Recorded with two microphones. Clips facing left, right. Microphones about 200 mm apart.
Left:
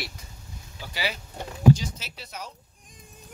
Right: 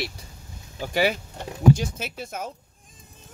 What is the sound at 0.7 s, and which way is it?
Speech, 50° right (ahead or behind).